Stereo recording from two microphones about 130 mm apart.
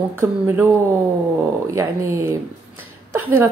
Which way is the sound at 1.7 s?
25° right (ahead or behind).